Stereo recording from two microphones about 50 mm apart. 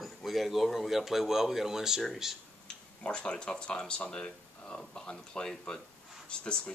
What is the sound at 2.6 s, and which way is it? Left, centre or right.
Speech, left.